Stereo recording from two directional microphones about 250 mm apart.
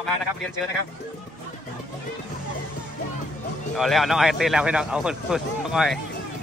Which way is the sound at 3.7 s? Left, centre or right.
Centre.